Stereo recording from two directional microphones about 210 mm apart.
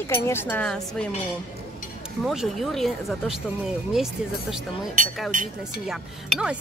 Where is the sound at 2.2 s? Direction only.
Centre (ahead or behind).